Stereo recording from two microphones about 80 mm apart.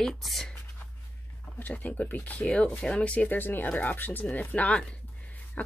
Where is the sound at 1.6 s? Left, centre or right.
Left.